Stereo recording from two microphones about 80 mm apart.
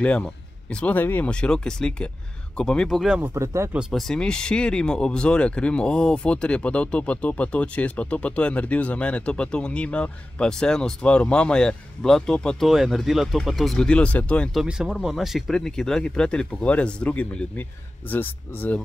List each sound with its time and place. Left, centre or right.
0.0 s speech: centre
1.3 s speech: centre
3.3 s speech: right
3.9 s speech: centre
13.8 s speech: centre
14.5 s speech: centre; by 18.8 s left